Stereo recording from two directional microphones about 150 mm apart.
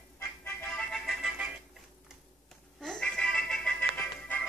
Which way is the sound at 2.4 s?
5° left (ahead or behind).